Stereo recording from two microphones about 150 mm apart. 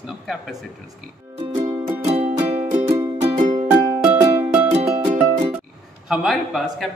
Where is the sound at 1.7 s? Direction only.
15° right (ahead or behind).